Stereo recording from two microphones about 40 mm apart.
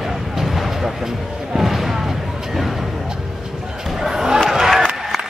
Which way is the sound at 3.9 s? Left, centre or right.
Centre.